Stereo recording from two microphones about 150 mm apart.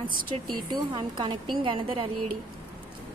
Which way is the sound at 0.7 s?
35° right (ahead or behind).